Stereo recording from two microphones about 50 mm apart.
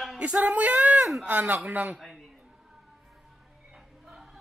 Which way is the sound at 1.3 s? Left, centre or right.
Right.